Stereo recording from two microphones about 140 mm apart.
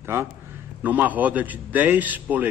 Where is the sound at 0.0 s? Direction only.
20° right (ahead or behind).